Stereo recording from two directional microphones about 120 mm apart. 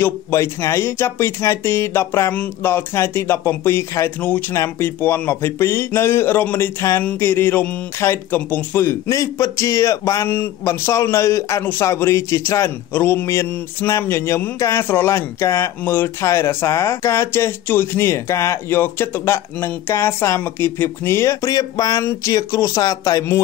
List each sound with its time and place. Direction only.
0.0 s speech: 20° left (ahead or behind)